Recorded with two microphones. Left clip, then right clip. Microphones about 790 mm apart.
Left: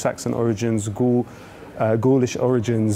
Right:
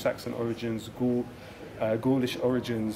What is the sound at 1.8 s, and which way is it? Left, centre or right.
Speech, left.